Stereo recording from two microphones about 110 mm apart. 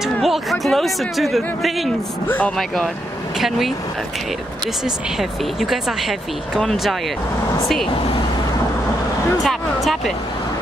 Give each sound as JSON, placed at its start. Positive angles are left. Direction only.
{"t": 0.0, "sound": "speech", "side_deg": 0}
{"t": 2.2, "sound": "speech", "side_deg": 15}
{"t": 2.5, "sound": "speech", "side_deg": 5}
{"t": 5.6, "sound": "speech", "side_deg": -5}
{"t": 9.4, "sound": "speech", "side_deg": 0}